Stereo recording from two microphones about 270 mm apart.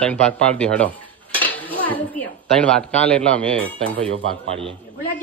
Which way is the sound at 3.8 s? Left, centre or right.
Centre.